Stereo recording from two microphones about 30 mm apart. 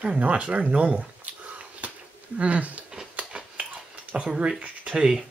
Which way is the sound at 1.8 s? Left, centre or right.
Right.